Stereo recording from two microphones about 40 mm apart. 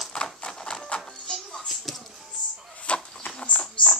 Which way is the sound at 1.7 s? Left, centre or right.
Centre.